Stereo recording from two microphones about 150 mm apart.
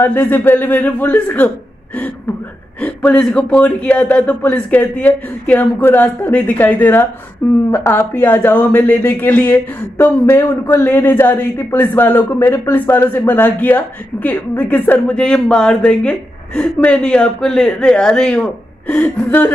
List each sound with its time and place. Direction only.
0.0 s a woman's voice: 10° left (ahead or behind)
2.8 s a woman's voice: 5° left (ahead or behind)